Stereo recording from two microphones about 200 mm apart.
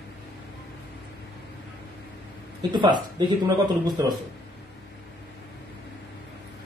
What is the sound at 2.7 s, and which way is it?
Speech, 20° right (ahead or behind).